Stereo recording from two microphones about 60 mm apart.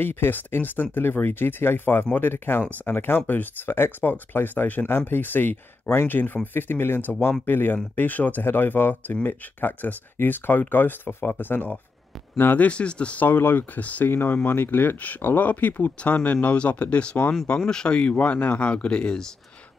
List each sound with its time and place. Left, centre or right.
0.0 s speech: left; by 19.2 s centre